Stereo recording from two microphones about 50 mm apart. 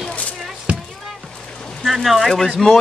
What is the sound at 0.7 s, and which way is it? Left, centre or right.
Music, right.